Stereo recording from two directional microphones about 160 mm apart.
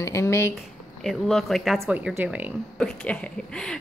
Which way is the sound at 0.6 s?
Centre (ahead or behind).